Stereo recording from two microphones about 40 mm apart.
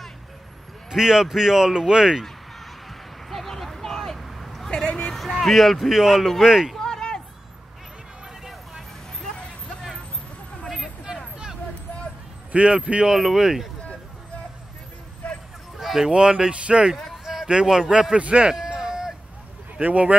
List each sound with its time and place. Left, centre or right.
0.8 s speech: centre
3.3 s vehicle: centre
4.6 s a sound: left
5.1 s speech: centre
6.8 s a sound: centre
12.5 s speech: right
13.0 s speech: centre
15.8 s fowl: centre
16.1 s speech: right
17.2 s a sound: centre
17.5 s speech: centre
18.1 s speech: right
18.5 s a sound: centre
19.8 s speech: right